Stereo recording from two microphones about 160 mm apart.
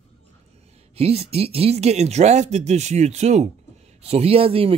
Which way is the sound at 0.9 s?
40° right (ahead or behind).